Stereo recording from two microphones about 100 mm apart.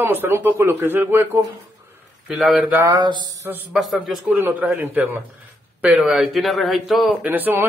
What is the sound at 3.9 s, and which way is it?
A man's voice, 15° right (ahead or behind).